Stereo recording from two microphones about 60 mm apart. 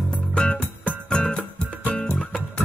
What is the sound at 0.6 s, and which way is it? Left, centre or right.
Music, left.